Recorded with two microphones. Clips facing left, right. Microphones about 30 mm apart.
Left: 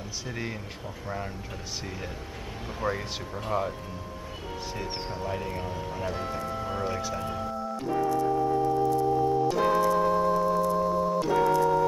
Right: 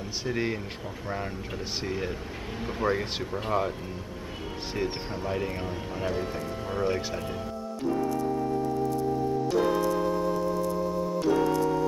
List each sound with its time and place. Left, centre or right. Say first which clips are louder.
0.3 s speech: right 7 dB; centre
5.1 s speech: right 1 dB; centre
6.1 s speech: even; centre
9.5 s organ: left 1 dB; centre
10.4 s music: left 3 dB; left
11.1 s organ: right 1 dB; centre